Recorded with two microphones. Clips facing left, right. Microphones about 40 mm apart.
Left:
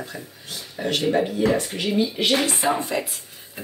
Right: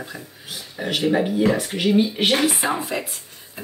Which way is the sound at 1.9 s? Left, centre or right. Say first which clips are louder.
Right 1 dB; right.